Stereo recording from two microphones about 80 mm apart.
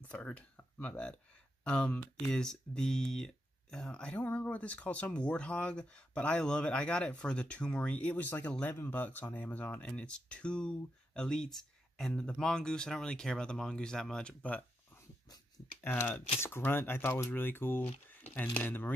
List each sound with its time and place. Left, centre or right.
0.1 s speech: centre
15.8 s speech: left